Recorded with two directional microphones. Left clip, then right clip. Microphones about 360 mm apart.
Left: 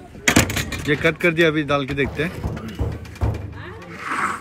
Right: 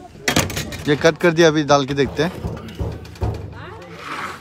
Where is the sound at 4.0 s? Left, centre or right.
Centre.